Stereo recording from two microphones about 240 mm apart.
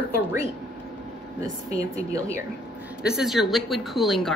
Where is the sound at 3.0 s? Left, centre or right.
Centre.